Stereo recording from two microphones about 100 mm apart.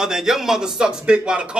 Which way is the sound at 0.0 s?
5° right (ahead or behind).